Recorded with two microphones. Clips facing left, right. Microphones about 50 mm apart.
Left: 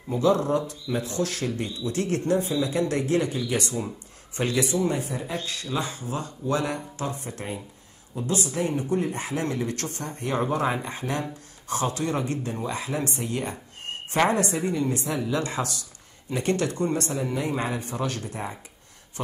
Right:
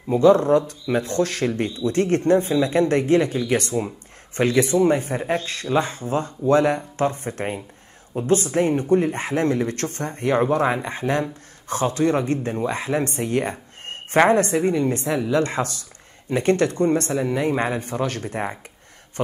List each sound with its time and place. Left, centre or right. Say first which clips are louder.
0.1 s speech: right 7 dB; right